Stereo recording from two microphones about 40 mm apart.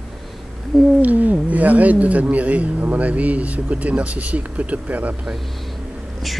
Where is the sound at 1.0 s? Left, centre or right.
Right.